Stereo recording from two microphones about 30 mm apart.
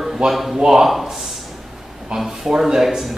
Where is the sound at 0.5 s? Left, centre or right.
Right.